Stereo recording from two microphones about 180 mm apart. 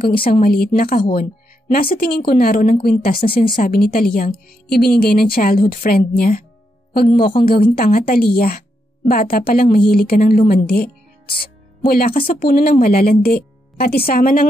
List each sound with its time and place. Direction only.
0.1 s a woman's voice: 55° left (ahead or behind)